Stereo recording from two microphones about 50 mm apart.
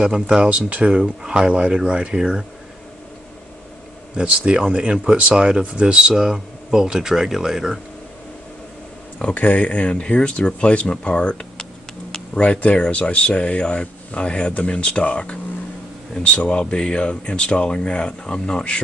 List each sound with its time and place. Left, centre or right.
0.0 s speech: centre
4.5 s speech: centre
9.2 s speech: left